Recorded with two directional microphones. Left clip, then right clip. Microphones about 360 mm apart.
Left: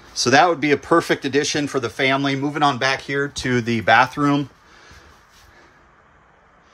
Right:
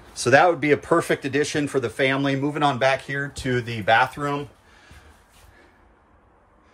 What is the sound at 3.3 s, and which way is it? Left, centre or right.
Speech, centre.